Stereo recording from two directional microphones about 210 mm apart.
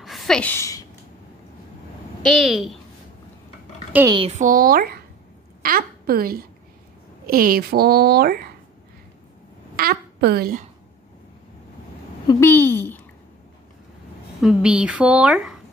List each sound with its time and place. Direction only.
0.0 s a sound: centre (ahead or behind)
2.2 s speech: centre (ahead or behind)
4.1 s a woman's voice: 30° right (ahead or behind); by 8.5 s 45° right (ahead or behind)
9.8 s a child's voice: 45° right (ahead or behind)
12.3 s a woman's voice: 10° left (ahead or behind)
14.4 s speech: 5° right (ahead or behind)